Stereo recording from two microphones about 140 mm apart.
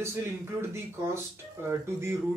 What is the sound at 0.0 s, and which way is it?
Speech, 20° right (ahead or behind).